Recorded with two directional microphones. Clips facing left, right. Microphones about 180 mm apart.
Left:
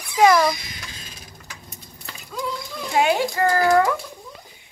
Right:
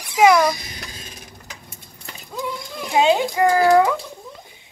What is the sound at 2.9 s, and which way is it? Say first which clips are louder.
Speech: right 3 dB; 20° right (ahead or behind).